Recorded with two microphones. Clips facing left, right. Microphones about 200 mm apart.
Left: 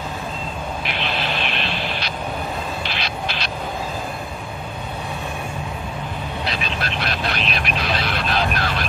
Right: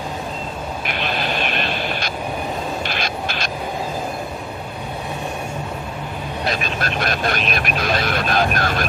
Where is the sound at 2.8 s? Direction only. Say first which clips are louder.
Right 2 dB; 45° right (ahead or behind).